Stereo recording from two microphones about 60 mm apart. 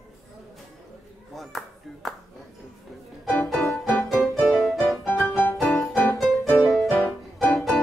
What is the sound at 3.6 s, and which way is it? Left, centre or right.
Music, left.